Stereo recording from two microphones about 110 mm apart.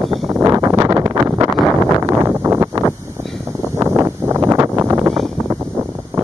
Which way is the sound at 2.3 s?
20° right (ahead or behind).